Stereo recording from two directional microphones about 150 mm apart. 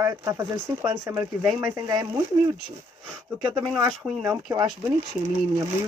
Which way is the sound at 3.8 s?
5° right (ahead or behind).